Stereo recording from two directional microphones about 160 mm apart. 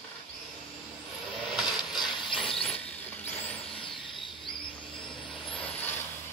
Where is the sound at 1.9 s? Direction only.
30° left (ahead or behind).